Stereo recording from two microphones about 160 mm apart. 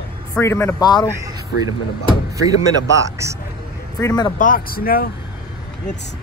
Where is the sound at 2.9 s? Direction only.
20° right (ahead or behind).